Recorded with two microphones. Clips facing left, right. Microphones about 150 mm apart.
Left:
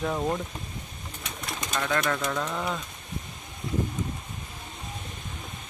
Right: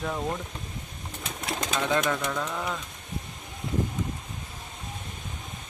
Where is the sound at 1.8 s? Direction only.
15° right (ahead or behind).